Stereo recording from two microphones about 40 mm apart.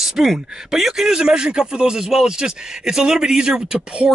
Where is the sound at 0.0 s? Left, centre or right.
Centre.